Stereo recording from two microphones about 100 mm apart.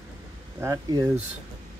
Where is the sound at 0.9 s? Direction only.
40° right (ahead or behind).